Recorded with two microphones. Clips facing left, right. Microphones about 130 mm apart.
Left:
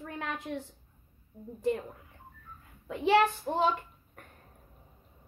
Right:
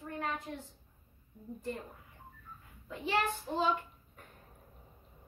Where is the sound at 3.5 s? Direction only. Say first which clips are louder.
Left 4 dB; 50° left (ahead or behind).